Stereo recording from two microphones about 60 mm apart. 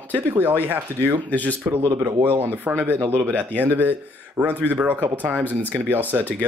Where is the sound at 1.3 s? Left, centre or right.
Left.